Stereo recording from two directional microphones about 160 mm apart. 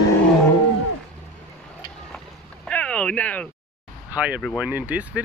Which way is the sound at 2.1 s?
5° left (ahead or behind).